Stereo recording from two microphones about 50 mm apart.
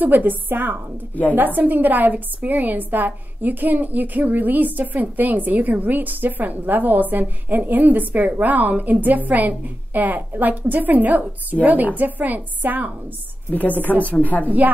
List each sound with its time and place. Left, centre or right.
0.0 s a woman's voice: right
13.5 s a woman's voice: left